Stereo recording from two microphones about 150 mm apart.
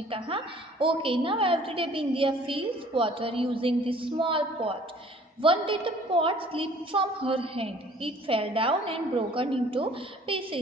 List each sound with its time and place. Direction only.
0.1 s a woman's voice: 35° right (ahead or behind)